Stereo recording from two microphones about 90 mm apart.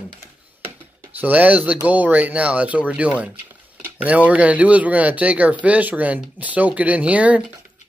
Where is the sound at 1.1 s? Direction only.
20° right (ahead or behind).